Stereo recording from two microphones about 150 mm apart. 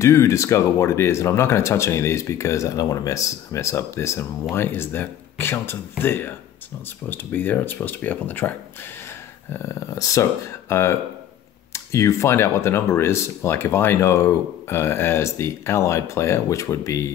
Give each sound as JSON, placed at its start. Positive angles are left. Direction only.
{"t": 0.0, "sound": "speech", "side_deg": 20}
{"t": 9.5, "sound": "speech", "side_deg": 20}